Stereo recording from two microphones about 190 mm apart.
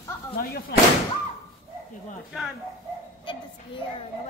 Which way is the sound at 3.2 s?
25° left (ahead or behind).